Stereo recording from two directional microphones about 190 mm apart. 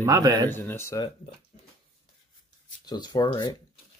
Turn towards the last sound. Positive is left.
turn(degrees=25)  # may be behind; listen again after turning